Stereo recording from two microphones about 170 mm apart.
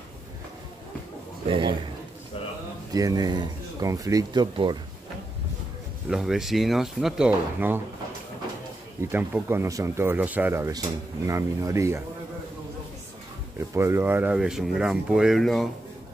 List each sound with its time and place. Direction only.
1.5 s speech: 30° right (ahead or behind)
2.9 s speech: 20° right (ahead or behind)
6.0 s speech: 5° right (ahead or behind)
9.1 s speech: 15° right (ahead or behind)
13.7 s speech: 15° right (ahead or behind); by 15.7 s centre (ahead or behind)